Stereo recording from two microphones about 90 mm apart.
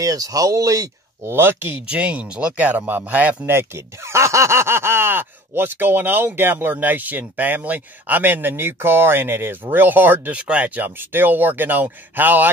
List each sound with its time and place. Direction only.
0.0 s speech: 40° right (ahead or behind)
1.3 s speech: 25° right (ahead or behind)